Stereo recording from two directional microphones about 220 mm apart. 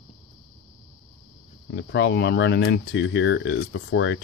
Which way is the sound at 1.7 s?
55° left (ahead or behind).